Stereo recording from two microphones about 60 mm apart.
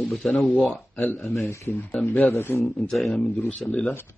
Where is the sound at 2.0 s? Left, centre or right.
Left.